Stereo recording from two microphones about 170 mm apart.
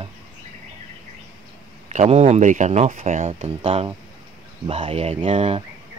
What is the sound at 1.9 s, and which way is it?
Speech, 40° right (ahead or behind).